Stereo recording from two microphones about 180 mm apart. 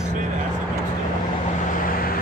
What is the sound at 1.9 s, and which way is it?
Vehicle, 55° left (ahead or behind).